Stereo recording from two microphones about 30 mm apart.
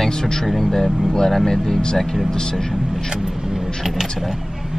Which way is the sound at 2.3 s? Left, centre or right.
Left.